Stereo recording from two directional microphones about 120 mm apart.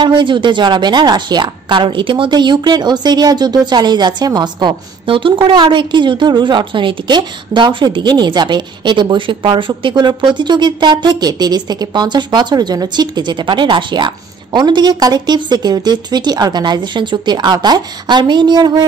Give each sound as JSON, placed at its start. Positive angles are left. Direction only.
{"t": 0.0, "sound": "a woman's voice", "side_deg": -40}